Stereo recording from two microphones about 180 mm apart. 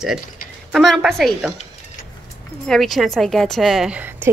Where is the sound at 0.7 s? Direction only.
Centre (ahead or behind).